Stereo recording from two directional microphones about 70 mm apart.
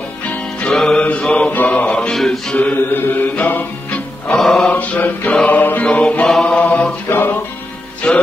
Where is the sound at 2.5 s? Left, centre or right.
Left.